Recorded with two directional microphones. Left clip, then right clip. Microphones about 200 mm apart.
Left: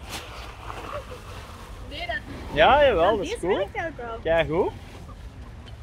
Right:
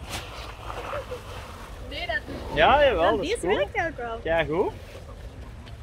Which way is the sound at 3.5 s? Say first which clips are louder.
Right 2 dB; 35° right (ahead or behind).